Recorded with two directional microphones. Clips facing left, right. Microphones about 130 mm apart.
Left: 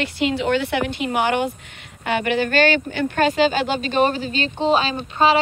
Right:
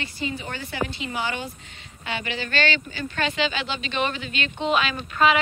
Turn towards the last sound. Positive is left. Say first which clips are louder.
# left 3 dB
turn(degrees=30)  # may be behind; listen again after turning